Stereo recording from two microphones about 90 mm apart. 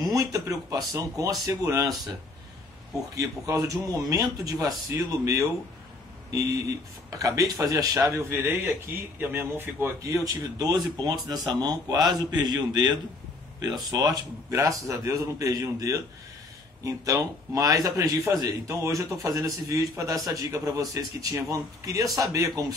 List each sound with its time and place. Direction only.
0.0 s speech: 40° right (ahead or behind)
3.2 s speech: 40° right (ahead or behind)
7.1 s speech: 40° right (ahead or behind)
14.5 s speech: 35° right (ahead or behind)